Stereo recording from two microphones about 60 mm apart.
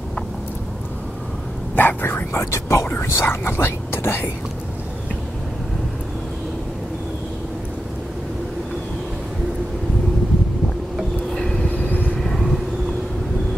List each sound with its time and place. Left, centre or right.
1.8 s whispering: left
2.9 s whispering: left
11.3 s vehicle: centre
11.7 s vehicle: left
12.2 s vehicle: centre